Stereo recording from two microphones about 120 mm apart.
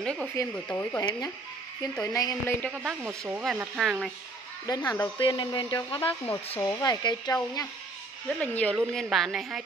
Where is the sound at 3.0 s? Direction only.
15° right (ahead or behind).